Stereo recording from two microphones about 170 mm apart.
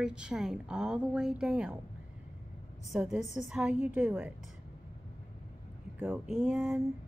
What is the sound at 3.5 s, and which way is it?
Speech, 5° right (ahead or behind).